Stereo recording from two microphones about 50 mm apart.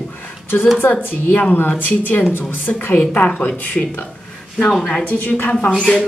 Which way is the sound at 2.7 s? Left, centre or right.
Left.